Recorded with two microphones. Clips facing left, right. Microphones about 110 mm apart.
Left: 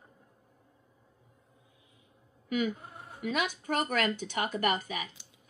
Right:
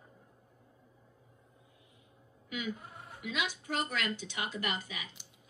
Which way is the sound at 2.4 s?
45° left (ahead or behind).